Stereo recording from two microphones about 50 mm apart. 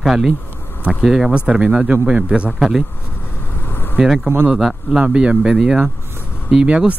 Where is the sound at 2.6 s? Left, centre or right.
Centre.